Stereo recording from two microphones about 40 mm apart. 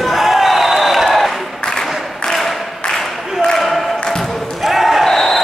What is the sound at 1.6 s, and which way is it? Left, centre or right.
Applause, centre.